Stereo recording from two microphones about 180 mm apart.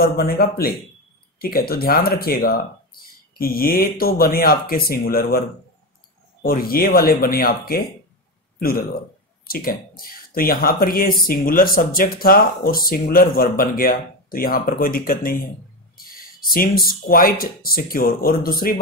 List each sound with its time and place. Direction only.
0.0 s speech: 55° left (ahead or behind)
6.4 s speech: 55° left (ahead or behind)